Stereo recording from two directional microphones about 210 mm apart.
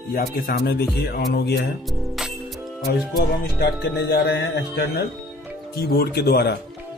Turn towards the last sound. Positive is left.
turn(degrees=45)  # may be behind; listen again after turning